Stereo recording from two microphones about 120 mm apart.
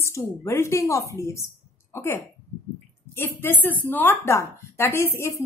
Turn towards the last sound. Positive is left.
turn(degrees=20)  # may be behind; listen again after turning